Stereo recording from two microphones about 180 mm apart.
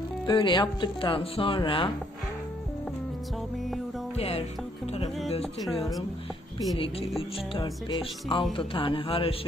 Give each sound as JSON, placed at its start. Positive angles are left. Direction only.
{"t": 0.3, "sound": "speech", "side_deg": 25}
{"t": 4.2, "sound": "music", "side_deg": 35}
{"t": 5.4, "sound": "music", "side_deg": 0}
{"t": 6.8, "sound": "music", "side_deg": 30}
{"t": 7.6, "sound": "speech", "side_deg": 25}